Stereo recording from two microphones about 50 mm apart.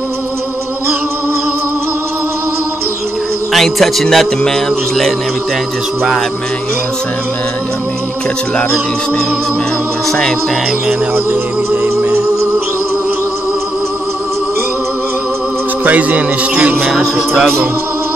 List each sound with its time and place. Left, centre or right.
3.5 s a man's voice: centre
4.5 s music: centre
15.8 s a man's voice: right